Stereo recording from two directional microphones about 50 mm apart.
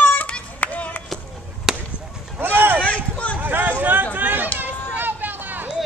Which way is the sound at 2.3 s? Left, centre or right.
Right.